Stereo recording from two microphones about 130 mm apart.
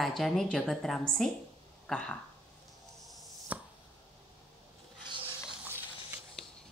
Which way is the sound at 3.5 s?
10° right (ahead or behind).